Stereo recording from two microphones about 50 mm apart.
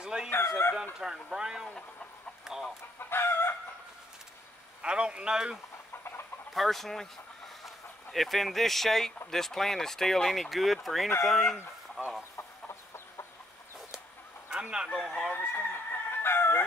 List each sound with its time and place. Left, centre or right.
0.0 s chicken: centre
0.9 s speech: centre
2.5 s chicken: centre
3.0 s chicken: left
4.8 s speech: centre
6.5 s speech: centre
14.5 s speech: centre
15.0 s speech: centre
15.3 s chicken: left